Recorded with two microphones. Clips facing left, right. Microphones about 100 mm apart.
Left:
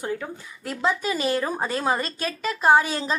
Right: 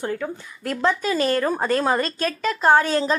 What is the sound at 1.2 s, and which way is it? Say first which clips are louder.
Speech: right 4 dB; 10° left (ahead or behind).